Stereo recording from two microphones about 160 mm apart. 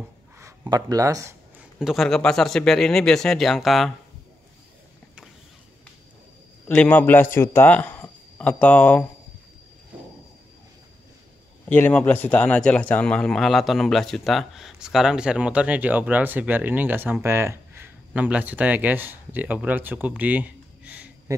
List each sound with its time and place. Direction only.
0.4 s speech: 20° right (ahead or behind)
1.6 s speech: 5° right (ahead or behind)
6.7 s a man's voice: 10° left (ahead or behind)
11.7 s a man's voice: 10° left (ahead or behind); by 21.1 s 10° right (ahead or behind)
21.3 s a sound: 20° right (ahead or behind)